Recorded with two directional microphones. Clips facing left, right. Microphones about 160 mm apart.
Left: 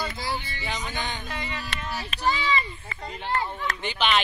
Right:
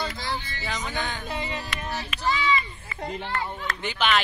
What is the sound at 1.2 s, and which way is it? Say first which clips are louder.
Music: right 3 dB; 25° right (ahead or behind).